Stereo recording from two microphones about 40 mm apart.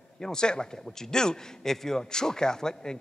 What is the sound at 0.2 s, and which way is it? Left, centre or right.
A man's voice, centre.